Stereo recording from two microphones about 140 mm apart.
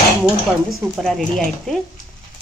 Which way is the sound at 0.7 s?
Centre (ahead or behind).